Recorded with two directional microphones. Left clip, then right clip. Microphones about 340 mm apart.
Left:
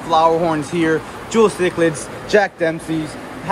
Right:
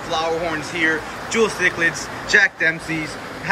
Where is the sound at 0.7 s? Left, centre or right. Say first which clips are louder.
Left 2 dB; centre.